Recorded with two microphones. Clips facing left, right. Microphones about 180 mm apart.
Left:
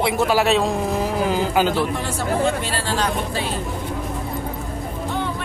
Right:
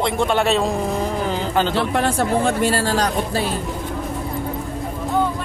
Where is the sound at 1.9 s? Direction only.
60° right (ahead or behind); by 3.4 s 40° right (ahead or behind).